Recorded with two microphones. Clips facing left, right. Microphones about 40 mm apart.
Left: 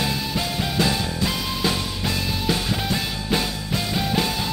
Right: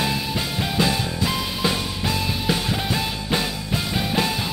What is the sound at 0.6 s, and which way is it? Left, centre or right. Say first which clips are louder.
Music: right 1 dB; centre.